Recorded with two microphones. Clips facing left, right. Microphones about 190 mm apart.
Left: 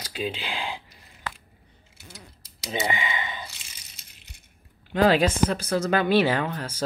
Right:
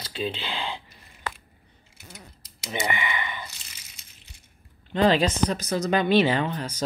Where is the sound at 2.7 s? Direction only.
20° left (ahead or behind).